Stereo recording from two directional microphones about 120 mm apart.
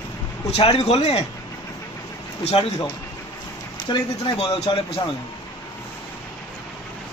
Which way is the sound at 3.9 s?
45° left (ahead or behind).